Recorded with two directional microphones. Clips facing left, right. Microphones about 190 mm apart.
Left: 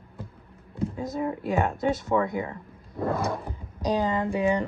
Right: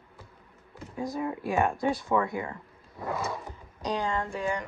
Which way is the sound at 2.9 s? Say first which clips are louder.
Left 6 dB; 55° left (ahead or behind).